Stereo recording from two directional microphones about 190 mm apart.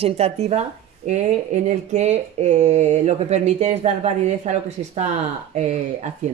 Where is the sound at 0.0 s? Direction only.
35° right (ahead or behind).